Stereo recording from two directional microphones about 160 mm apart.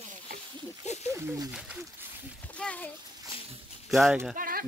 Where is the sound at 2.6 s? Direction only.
10° left (ahead or behind).